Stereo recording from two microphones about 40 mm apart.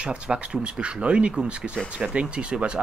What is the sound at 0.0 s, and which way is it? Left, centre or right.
Speech, right.